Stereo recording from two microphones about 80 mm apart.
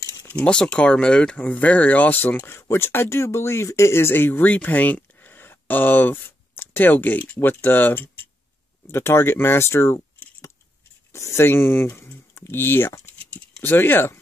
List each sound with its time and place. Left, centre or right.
0.4 s speech: centre; by 9.9 s left
11.1 s speech: left